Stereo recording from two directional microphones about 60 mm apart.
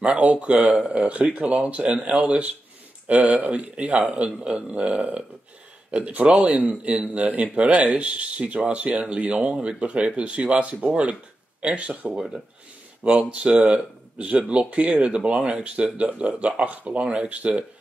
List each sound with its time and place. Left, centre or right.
0.0 s speech: right